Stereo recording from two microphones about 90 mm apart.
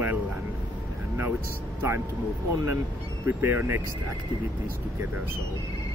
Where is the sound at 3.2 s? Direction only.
25° right (ahead or behind).